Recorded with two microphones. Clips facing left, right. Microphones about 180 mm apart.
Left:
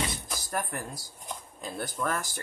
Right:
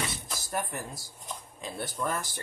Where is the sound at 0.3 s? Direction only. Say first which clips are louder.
Even; centre (ahead or behind).